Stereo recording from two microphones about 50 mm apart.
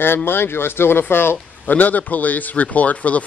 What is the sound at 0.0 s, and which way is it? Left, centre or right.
Speech, left.